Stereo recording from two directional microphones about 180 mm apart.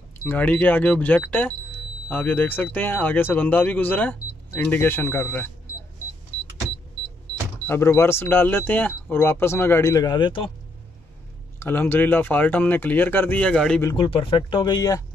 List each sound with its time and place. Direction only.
0.2 s speech: 10° left (ahead or behind)
7.6 s speech: 15° left (ahead or behind)
11.6 s speech: 10° left (ahead or behind)
13.9 s speech: 30° left (ahead or behind)